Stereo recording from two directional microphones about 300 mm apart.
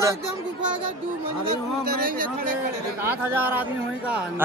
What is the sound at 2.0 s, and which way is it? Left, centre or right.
Speech, right.